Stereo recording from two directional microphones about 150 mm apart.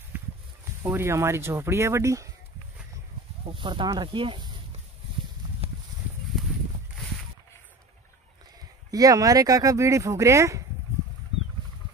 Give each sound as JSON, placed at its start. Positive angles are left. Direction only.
{"t": 0.1, "sound": "a sound", "side_deg": -15}
{"t": 0.8, "sound": "speech", "side_deg": -20}
{"t": 3.4, "sound": "speech", "side_deg": -35}
{"t": 8.9, "sound": "speech", "side_deg": -25}